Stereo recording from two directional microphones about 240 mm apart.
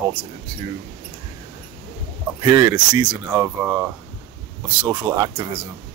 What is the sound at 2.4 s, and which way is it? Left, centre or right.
Speech, centre.